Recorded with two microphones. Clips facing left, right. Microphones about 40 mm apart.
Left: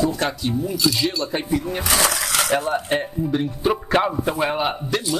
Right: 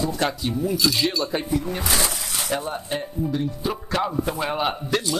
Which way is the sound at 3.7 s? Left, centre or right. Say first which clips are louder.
Left 7 dB; left.